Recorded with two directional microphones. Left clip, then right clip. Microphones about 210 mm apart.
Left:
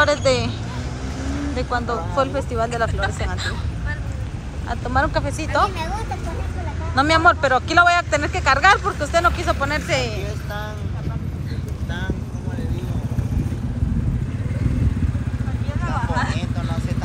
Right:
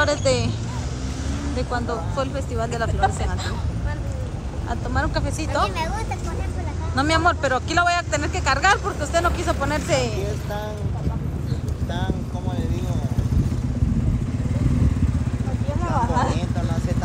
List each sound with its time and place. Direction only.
0.0 s speech: 5° right (ahead or behind)
1.6 s speech: 10° right (ahead or behind)
4.6 s speech: 5° right (ahead or behind)
7.0 s speech: 5° right (ahead or behind)
15.8 s vehicle: 35° right (ahead or behind)